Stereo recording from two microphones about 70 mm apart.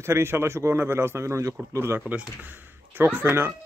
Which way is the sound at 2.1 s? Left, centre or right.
Right.